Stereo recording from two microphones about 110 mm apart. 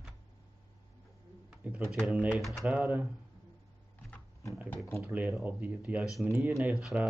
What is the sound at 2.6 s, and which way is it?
Speech, 10° right (ahead or behind).